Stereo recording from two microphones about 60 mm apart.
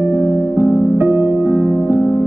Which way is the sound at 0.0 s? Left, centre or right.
Right.